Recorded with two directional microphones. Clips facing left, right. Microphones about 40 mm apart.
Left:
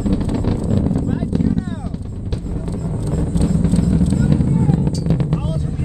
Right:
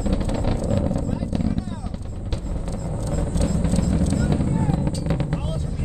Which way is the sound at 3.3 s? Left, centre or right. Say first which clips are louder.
Left 6 dB; centre.